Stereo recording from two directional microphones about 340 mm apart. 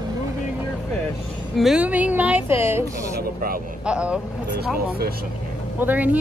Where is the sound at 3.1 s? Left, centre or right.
Right.